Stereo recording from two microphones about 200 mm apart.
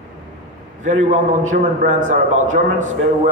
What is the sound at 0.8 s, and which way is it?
A man's voice, 35° right (ahead or behind).